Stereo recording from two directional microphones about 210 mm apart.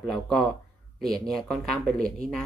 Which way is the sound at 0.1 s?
Centre (ahead or behind).